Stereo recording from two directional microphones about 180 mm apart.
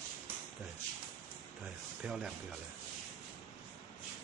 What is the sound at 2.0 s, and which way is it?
Speech, 5° right (ahead or behind).